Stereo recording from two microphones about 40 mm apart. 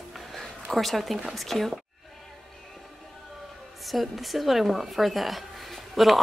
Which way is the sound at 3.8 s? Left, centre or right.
Centre.